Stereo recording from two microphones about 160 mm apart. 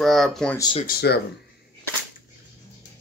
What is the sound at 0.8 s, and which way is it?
Speech, 90° left.